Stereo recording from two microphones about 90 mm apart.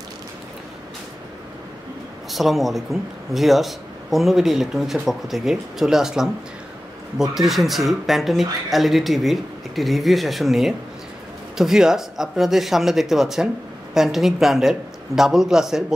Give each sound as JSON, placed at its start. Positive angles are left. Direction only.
{"t": 2.3, "sound": "speech", "side_deg": 0}